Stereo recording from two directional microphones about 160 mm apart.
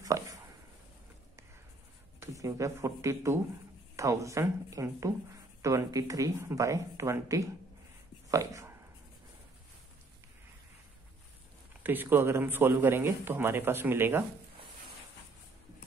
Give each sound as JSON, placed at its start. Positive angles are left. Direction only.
{"t": 0.0, "sound": "a sound", "side_deg": -20}
{"t": 2.1, "sound": "speech", "side_deg": -20}
{"t": 8.3, "sound": "dog", "side_deg": -20}
{"t": 11.8, "sound": "speech", "side_deg": -10}